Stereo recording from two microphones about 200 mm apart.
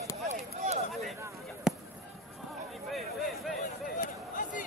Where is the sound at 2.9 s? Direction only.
Centre (ahead or behind).